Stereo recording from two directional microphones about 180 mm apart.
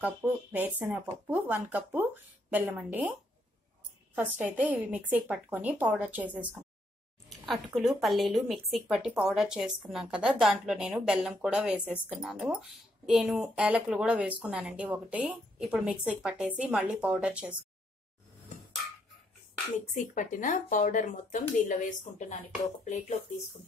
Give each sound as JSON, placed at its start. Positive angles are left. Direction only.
{"t": 0.0, "sound": "speech", "side_deg": -10}
{"t": 4.1, "sound": "a woman's voice", "side_deg": -10}
{"t": 20.0, "sound": "speech", "side_deg": 45}